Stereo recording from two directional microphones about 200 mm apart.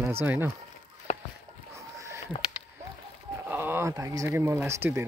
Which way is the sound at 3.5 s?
10° right (ahead or behind).